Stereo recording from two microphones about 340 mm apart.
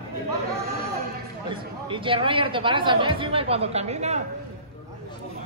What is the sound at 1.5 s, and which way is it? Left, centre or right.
Speech, centre.